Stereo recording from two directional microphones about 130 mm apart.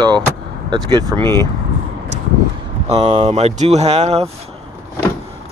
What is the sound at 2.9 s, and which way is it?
Speech, 40° right (ahead or behind).